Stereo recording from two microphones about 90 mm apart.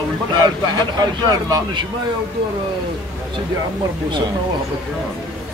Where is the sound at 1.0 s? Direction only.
45° right (ahead or behind).